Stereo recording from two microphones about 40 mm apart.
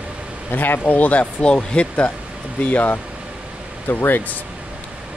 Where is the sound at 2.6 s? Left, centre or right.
Left.